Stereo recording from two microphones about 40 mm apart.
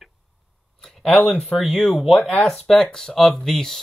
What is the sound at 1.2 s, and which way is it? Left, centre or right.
Speech, left.